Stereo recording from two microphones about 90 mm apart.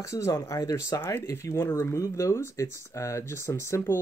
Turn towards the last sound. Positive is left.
turn(degrees=30)  # may be behind; listen again after turning